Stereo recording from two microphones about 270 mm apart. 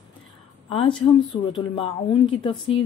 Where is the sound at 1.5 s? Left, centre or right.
Centre.